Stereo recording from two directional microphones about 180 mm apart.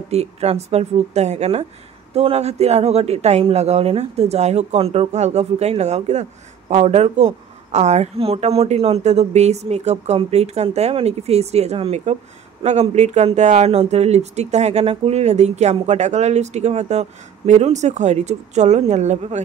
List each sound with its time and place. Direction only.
0.1 s speech: 35° right (ahead or behind)